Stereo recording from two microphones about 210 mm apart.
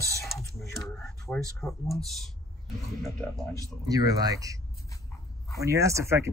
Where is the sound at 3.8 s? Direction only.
15° right (ahead or behind).